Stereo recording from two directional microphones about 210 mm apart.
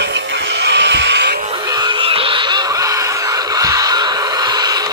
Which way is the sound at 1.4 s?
20° right (ahead or behind).